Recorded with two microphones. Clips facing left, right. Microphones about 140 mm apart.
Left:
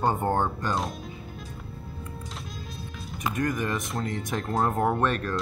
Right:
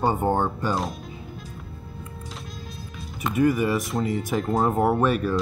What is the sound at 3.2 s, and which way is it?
Speech, 5° right (ahead or behind).